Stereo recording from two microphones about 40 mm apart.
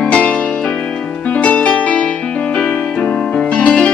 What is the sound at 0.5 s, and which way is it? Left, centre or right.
Music, centre.